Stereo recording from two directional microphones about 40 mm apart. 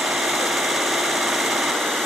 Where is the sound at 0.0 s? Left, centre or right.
Centre.